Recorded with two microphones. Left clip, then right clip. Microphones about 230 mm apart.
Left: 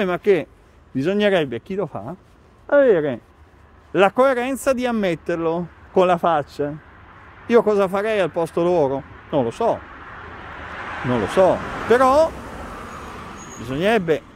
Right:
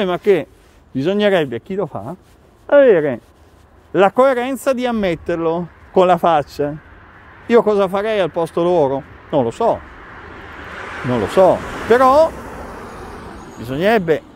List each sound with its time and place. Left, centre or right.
0.0 s speech: centre
10.7 s a sound: right
11.1 s speech: centre
11.5 s speech: right
11.9 s speech: centre
13.6 s speech: centre